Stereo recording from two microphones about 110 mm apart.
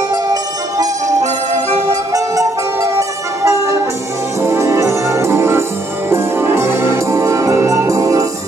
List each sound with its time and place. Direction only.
0.1 s music: 35° right (ahead or behind)
1.2 s music: 90° right
1.9 s music: 30° right (ahead or behind)